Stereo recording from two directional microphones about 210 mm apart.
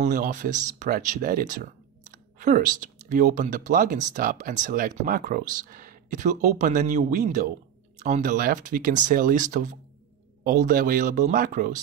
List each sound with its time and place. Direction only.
0.0 s speech: 35° right (ahead or behind)